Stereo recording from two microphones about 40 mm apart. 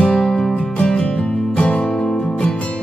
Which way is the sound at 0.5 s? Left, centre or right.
Left.